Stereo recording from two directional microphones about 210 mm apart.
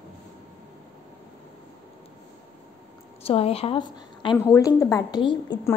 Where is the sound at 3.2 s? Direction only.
30° left (ahead or behind).